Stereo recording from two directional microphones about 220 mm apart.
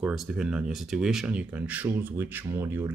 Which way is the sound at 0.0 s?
5° right (ahead or behind).